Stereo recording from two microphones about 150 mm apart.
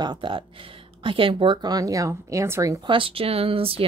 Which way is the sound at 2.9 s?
35° right (ahead or behind).